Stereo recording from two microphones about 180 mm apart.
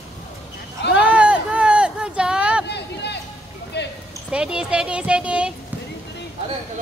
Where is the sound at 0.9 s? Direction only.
5° right (ahead or behind).